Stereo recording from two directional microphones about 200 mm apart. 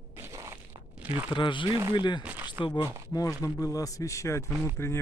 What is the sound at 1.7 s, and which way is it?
Speech, 15° right (ahead or behind).